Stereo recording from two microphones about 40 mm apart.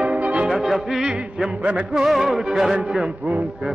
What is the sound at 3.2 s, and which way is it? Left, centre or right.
Music, right.